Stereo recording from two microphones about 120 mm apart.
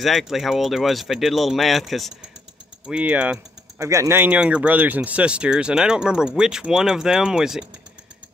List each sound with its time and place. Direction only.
0.0 s speech: centre (ahead or behind)
2.9 s speech: 10° right (ahead or behind)
3.8 s speech: 25° right (ahead or behind); by 7.6 s 5° right (ahead or behind)